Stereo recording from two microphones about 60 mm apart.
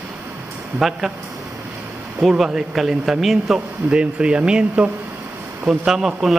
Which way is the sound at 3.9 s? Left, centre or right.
Centre.